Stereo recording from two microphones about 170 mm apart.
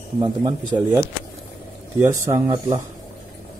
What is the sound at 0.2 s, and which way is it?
Speech, 30° right (ahead or behind).